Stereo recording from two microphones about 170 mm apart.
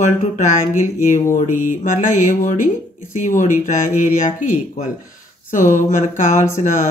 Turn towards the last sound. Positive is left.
turn(degrees=45)  # may be behind; listen again after turning